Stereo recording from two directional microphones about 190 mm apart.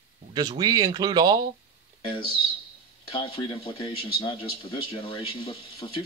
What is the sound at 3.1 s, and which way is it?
A man's voice, 25° left (ahead or behind).